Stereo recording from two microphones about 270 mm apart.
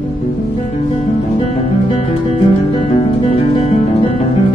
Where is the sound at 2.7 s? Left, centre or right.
Left.